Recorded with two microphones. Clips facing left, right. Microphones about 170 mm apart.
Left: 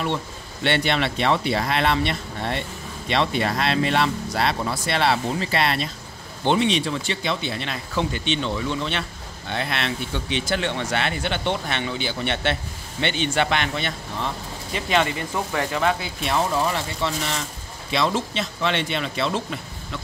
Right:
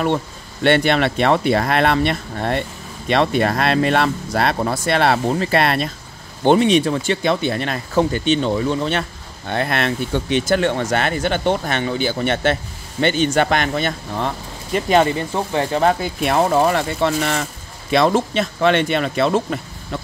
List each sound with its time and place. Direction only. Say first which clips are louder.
0.7 s speech: right 7 dB; 50° right (ahead or behind)